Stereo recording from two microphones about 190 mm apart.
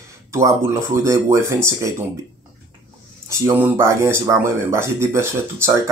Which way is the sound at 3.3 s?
15° right (ahead or behind).